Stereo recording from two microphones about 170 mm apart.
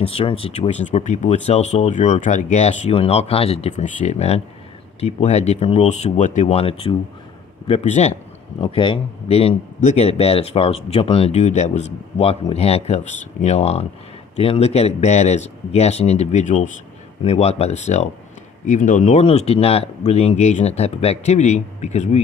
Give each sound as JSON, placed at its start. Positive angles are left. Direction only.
{"t": 0.0, "sound": "speech", "side_deg": 35}